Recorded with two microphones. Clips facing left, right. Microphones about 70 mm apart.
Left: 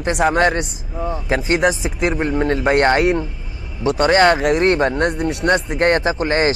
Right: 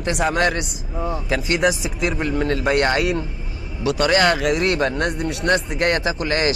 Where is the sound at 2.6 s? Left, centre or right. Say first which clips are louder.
Left 5 dB; left.